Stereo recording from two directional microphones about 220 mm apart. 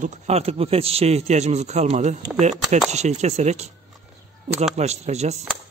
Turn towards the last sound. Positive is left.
turn(degrees=-30)  # may be behind; listen again after turning